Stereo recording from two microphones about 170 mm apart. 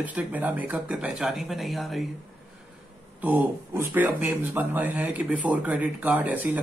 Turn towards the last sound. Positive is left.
turn(degrees=-10)  # may be behind; listen again after turning